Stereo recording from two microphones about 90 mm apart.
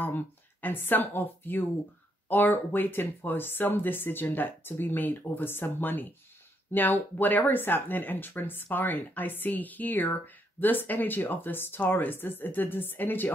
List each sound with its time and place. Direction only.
0.0 s speech: 20° left (ahead or behind)